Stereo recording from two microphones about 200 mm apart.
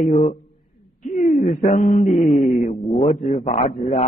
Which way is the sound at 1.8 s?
40° left (ahead or behind).